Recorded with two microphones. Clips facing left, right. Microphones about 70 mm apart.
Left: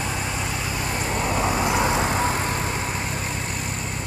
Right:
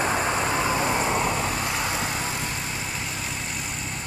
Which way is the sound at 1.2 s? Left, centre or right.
Centre.